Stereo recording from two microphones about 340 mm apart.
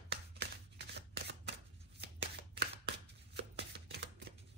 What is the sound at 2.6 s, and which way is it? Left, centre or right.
Shuffling cards, right.